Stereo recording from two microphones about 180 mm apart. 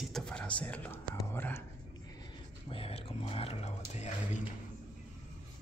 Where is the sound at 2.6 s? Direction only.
30° left (ahead or behind).